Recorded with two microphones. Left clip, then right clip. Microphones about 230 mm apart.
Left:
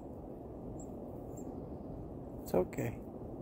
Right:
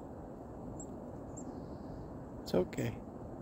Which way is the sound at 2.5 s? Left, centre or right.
Centre.